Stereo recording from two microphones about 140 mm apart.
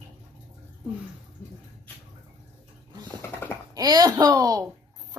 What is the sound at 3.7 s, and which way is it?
Speech, 30° right (ahead or behind).